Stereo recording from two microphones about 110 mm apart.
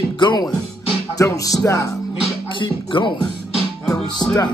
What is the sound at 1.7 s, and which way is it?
Speech, 30° left (ahead or behind).